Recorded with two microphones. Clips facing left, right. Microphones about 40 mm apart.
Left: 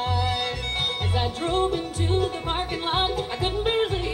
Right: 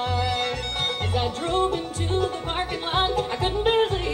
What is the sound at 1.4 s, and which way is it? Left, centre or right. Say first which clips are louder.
Music: even; centre.